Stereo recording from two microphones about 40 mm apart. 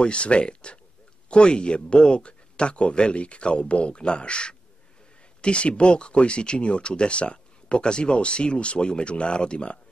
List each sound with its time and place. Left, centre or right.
0.0 s speech: left